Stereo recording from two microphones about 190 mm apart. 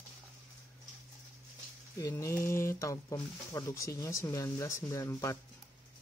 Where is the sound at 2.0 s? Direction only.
15° left (ahead or behind).